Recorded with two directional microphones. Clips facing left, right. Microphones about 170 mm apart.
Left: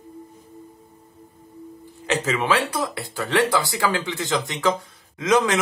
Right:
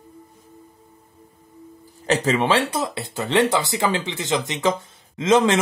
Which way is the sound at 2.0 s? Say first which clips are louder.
Right 3 dB; 35° right (ahead or behind).